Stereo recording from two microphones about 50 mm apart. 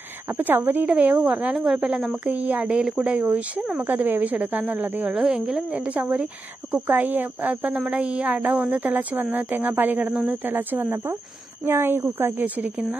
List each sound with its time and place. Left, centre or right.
0.4 s speech: right
0.8 s speech: right
3.8 s speech: right
5.1 s speech: centre
5.9 s speech: right
7.7 s speech: centre; by 10.9 s right
11.6 s speech: right